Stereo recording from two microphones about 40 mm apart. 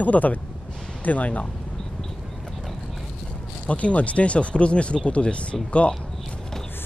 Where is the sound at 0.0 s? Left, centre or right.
Left.